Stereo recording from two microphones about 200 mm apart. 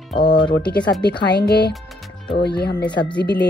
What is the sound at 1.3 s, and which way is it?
Speech, 55° left (ahead or behind).